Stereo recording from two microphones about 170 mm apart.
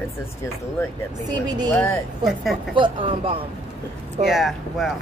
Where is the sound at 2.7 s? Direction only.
30° right (ahead or behind).